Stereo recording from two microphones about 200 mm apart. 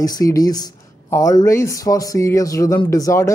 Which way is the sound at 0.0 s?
20° left (ahead or behind).